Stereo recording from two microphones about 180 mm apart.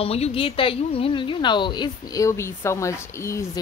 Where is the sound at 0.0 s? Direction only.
35° left (ahead or behind).